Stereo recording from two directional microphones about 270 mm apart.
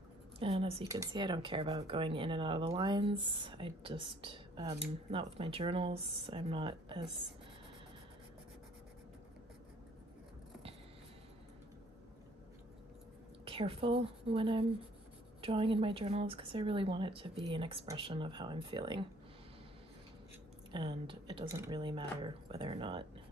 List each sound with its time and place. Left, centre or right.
0.4 s speech: right
13.5 s speech: right
20.7 s speech: centre